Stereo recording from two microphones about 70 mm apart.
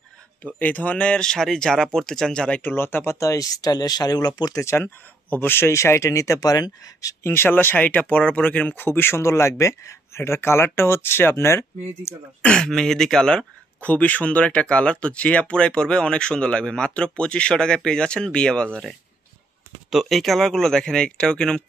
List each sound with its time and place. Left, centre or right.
0.6 s speech: left
2.6 s speech: left
3.2 s speech: left
4.6 s speech: left
7.2 s speech: left
9.2 s speech: left
12.4 s speech: centre
13.7 s speech: centre
19.9 s speech: centre